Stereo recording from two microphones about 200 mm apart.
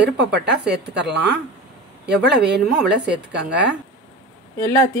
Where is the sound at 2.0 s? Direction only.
55° right (ahead or behind).